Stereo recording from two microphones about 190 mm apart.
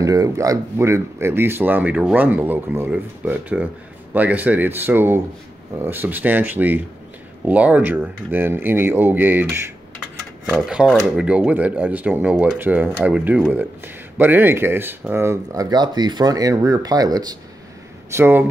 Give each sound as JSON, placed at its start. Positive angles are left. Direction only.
{"t": 0.0, "sound": "speech", "side_deg": -15}